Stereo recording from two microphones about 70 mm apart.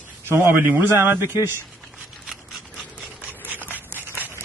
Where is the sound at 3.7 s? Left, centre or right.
Right.